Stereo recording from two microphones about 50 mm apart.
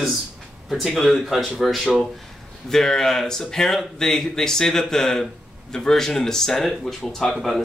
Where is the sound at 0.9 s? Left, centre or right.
Centre.